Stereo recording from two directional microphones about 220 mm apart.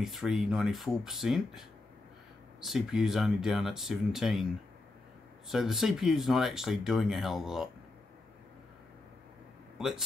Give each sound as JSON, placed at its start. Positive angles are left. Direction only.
{"t": 0.0, "sound": "speech", "side_deg": 0}
{"t": 5.5, "sound": "speech", "side_deg": 0}
{"t": 9.8, "sound": "speech", "side_deg": 0}